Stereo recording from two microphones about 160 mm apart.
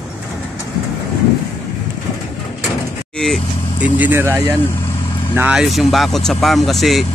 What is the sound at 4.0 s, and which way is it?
Speech, 15° right (ahead or behind).